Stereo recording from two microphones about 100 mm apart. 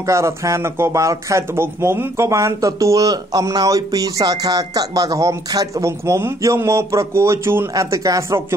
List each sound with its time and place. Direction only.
0.0 s speech: 30° right (ahead or behind)